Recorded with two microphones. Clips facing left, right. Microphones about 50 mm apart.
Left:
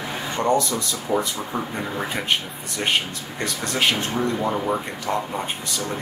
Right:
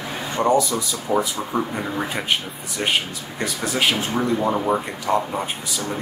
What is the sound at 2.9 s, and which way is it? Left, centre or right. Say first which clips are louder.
Speech: even; centre.